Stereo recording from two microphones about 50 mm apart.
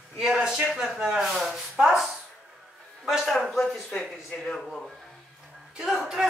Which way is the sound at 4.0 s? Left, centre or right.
Centre.